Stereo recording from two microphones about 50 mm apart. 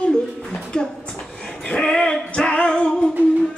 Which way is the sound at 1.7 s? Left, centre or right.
Centre.